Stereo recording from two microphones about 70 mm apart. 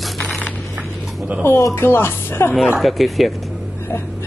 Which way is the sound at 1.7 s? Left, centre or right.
Left.